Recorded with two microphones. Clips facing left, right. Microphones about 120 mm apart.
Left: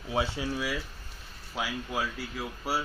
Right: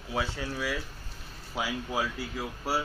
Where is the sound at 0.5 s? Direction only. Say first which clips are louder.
Right 2 dB; 10° left (ahead or behind).